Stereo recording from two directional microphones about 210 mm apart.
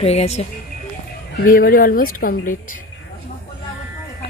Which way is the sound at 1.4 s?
45° left (ahead or behind).